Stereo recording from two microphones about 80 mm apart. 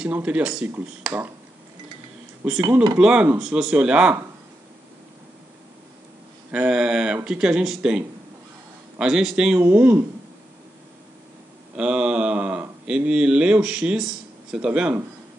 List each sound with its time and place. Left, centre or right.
0.1 s speech: centre
2.4 s speech: centre
6.5 s speech: centre
9.6 s speech: right
11.7 s speech: centre